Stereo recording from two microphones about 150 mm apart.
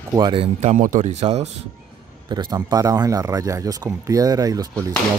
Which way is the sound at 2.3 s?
25° right (ahead or behind).